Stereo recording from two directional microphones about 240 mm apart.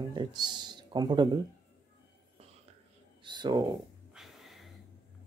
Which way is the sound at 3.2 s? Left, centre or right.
Centre.